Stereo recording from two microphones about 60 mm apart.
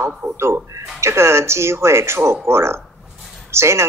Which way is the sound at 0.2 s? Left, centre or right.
Right.